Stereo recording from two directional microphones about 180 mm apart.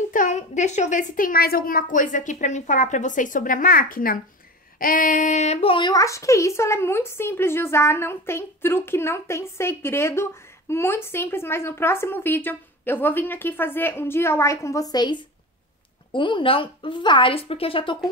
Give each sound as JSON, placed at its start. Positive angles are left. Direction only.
{"t": 0.1, "sound": "a woman's voice", "side_deg": 45}